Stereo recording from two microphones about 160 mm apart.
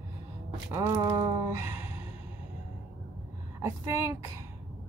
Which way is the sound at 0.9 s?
25° right (ahead or behind).